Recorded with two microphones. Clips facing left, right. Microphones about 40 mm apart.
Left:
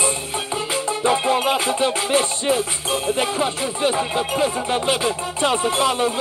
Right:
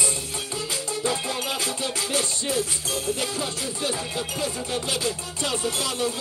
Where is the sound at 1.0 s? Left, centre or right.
Left.